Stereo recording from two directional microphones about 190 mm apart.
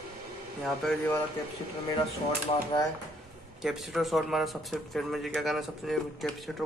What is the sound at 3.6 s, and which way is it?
Speech, centre (ahead or behind).